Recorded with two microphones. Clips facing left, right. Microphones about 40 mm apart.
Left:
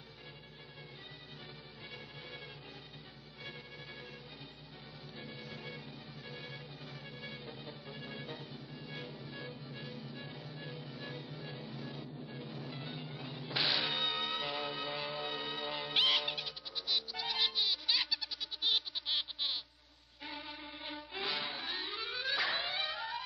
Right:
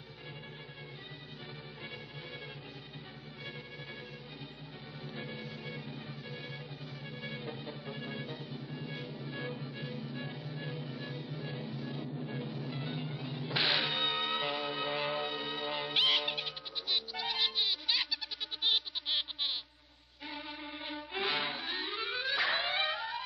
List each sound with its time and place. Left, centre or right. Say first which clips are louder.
5.3 s music: right 3 dB; centre
8.2 s music: right 3 dB; centre
15.2 s music: right 2 dB; centre
16.3 s music: right 3 dB; right
17.1 s music: right 1 dB; centre
18.7 s a sound: right 2 dB; centre
20.2 s music: right 3 dB; centre
21.1 s music: right 5 dB; right
21.5 s music: right 3 dB; centre
21.9 s a sound: right 3 dB; centre
22.5 s a sound: right 4 dB; right
22.9 s music: right 2 dB; centre